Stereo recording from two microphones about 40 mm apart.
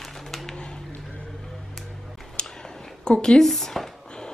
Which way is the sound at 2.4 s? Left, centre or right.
Left.